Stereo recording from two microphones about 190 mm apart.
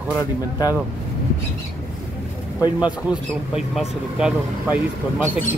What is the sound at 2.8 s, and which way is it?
Speech, 5° right (ahead or behind).